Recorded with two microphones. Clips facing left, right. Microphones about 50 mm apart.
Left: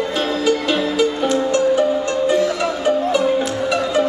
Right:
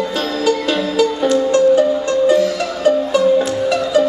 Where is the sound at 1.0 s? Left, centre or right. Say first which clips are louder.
Right 6 dB; left.